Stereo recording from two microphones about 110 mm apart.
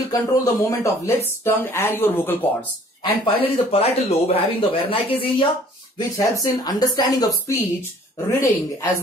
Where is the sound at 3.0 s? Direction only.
50° left (ahead or behind).